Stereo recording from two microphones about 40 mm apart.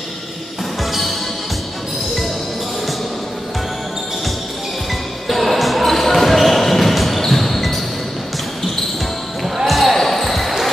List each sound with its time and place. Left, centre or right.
5.3 s basketball bounce: centre
9.7 s basketball bounce: centre